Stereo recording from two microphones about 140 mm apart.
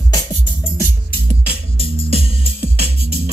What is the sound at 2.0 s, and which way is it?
Music, 50° right (ahead or behind).